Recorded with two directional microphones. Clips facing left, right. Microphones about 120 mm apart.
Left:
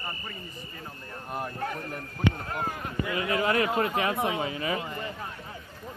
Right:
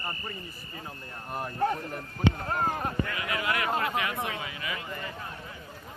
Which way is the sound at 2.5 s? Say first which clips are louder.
Right 4 dB; 40° right (ahead or behind).